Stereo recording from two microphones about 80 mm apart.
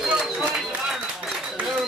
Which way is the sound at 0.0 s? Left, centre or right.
Centre.